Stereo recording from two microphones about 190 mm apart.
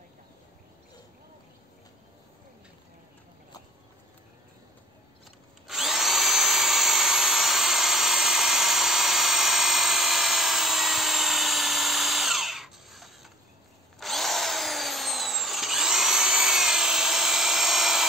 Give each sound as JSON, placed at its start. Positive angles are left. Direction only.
{"t": 5.7, "sound": "drill", "side_deg": 0}